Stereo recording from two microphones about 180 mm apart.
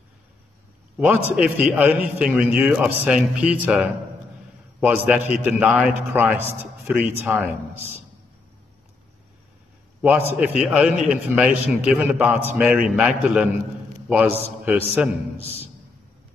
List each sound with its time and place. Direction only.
0.9 s a man's voice: 10° right (ahead or behind)
10.0 s a man's voice: 10° right (ahead or behind)
15.3 s speech: 35° left (ahead or behind)